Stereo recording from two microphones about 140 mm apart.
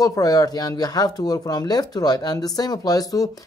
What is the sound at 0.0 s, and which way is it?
Speech, 25° left (ahead or behind).